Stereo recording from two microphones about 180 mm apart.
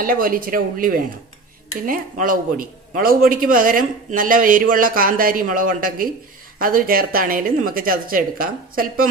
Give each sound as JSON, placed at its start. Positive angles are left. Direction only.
{"t": 0.0, "sound": "a man's voice", "side_deg": -50}